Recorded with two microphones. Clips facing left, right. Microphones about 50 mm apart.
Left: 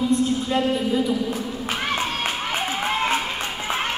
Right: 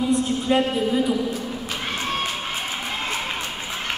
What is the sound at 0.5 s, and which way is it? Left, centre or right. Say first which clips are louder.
Speech: right 5 dB; centre.